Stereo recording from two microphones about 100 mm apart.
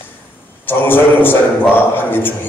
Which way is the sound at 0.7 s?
20° left (ahead or behind).